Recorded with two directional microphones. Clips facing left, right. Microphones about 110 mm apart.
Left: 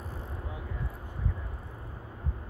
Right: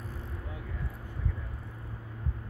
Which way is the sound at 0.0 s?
20° left (ahead or behind).